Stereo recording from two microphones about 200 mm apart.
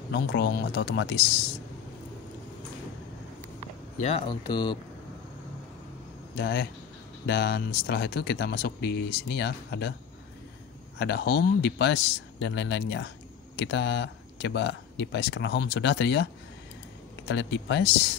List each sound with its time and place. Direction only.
0.1 s speech: 55° left (ahead or behind)
4.0 s speech: 25° left (ahead or behind)
6.3 s speech: 55° left (ahead or behind)
11.0 s speech: 55° left (ahead or behind)
17.3 s speech: 60° left (ahead or behind)